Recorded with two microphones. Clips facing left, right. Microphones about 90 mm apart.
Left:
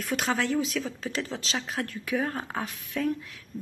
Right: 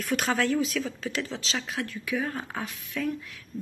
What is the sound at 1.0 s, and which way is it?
Speech, 35° left (ahead or behind).